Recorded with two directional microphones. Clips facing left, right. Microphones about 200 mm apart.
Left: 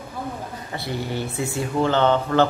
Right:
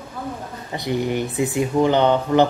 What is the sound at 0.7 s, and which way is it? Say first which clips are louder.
Speech: right 7 dB; 20° right (ahead or behind).